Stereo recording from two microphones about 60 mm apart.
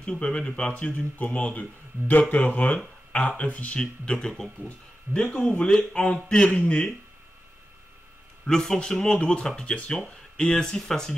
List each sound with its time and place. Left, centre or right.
0.2 s speech: centre
8.5 s speech: centre